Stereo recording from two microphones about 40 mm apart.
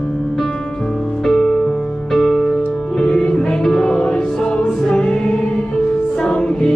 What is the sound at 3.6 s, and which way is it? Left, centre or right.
Music, centre.